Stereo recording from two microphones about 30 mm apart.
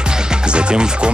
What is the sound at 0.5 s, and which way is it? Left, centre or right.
Speech, right.